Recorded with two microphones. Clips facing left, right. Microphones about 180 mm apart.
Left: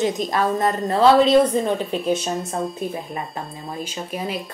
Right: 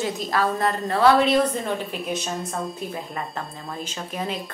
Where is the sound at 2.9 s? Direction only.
20° left (ahead or behind).